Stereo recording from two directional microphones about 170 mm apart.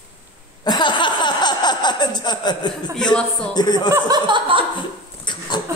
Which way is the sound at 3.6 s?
25° left (ahead or behind).